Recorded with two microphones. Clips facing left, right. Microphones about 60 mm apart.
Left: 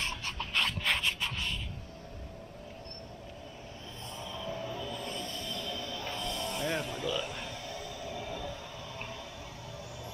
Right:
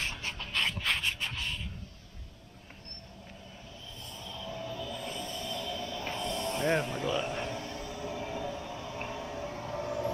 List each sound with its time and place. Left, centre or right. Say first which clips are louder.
0.0 s a sound: even; right
4.2 s train: left 2 dB; centre
5.0 s music: right 1 dB; centre; by 10.1 s right